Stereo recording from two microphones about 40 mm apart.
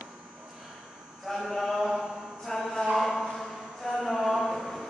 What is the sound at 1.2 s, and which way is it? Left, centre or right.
Mantra, centre.